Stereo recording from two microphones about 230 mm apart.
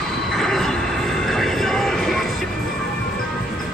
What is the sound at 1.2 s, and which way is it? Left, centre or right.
Music, centre.